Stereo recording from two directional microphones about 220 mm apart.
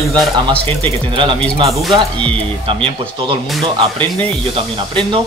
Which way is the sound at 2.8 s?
25° right (ahead or behind).